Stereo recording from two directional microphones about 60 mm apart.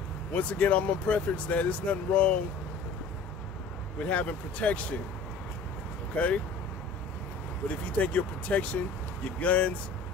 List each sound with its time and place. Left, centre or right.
0.3 s speech: left
4.0 s speech: left
6.1 s speech: left
7.6 s speech: left